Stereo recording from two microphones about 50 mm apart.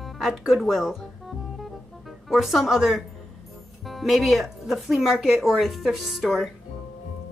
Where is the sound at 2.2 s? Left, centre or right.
Centre.